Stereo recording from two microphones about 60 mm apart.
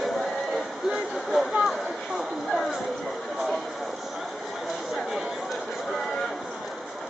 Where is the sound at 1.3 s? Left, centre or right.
Centre.